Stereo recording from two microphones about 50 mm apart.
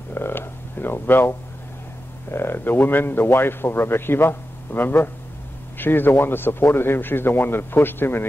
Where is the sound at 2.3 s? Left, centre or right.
Left.